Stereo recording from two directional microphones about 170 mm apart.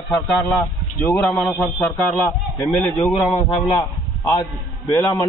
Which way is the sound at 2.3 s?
15° left (ahead or behind).